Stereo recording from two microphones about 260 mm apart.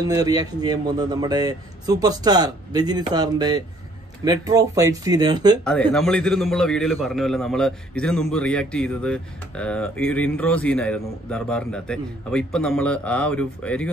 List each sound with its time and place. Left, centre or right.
0.0 s a man's voice: centre
5.6 s a man's voice: centre